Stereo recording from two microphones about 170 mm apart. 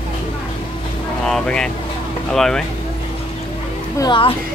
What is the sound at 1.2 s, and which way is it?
Speech, 5° left (ahead or behind).